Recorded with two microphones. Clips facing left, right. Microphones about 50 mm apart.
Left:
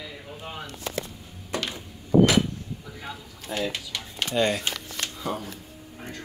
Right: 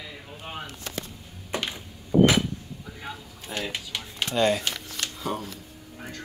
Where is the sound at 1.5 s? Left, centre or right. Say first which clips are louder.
Even; right.